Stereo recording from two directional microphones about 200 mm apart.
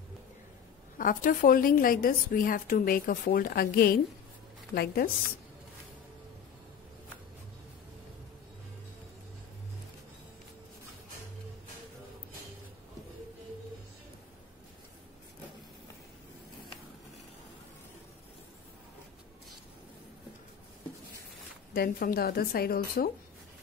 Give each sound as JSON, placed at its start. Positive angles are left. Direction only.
{"t": 0.9, "sound": "a woman's voice", "side_deg": 40}
{"t": 21.7, "sound": "a woman's voice", "side_deg": 50}